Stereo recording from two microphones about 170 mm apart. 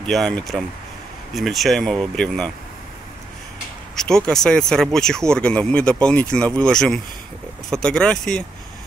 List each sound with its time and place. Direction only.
0.0 s speech: 5° left (ahead or behind)
3.9 s speech: 5° left (ahead or behind)